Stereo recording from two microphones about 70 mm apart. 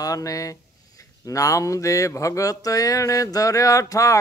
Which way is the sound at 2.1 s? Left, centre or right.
Left.